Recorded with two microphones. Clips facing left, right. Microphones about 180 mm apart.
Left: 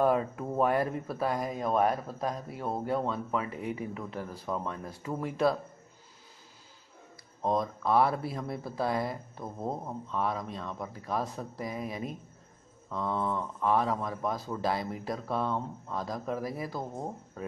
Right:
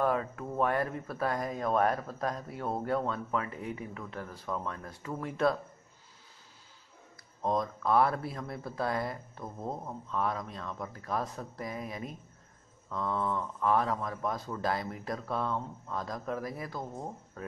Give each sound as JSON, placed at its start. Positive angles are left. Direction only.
{"t": 0.0, "sound": "speech", "side_deg": 15}
{"t": 7.4, "sound": "speech", "side_deg": 5}